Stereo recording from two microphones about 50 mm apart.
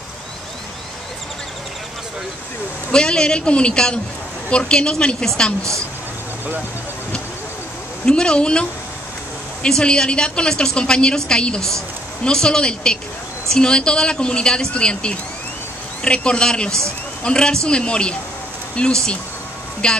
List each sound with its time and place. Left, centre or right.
2.9 s a woman's voice: centre
8.0 s a woman's voice: centre